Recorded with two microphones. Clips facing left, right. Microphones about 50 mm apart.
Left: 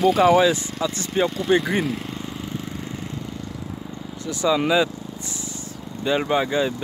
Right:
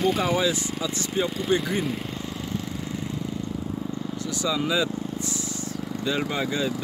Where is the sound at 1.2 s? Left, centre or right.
Left.